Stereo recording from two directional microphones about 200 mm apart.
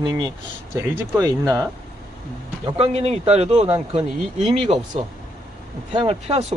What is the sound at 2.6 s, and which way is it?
Speech, 30° right (ahead or behind).